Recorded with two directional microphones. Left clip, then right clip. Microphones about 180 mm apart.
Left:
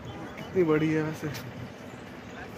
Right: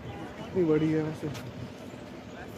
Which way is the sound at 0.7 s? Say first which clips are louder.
Right 1 dB; 10° left (ahead or behind).